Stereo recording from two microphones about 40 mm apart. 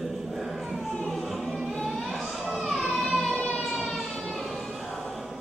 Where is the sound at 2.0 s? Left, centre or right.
Centre.